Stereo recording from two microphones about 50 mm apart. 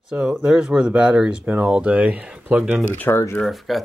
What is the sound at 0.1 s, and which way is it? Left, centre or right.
Speech, centre.